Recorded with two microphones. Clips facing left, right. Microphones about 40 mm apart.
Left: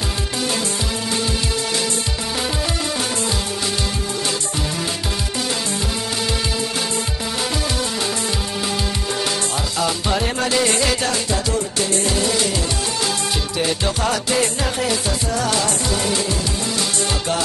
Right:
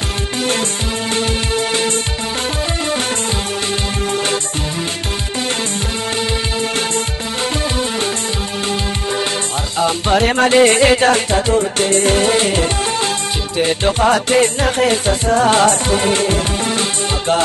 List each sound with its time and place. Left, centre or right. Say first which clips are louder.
9.8 s music: right 9 dB; right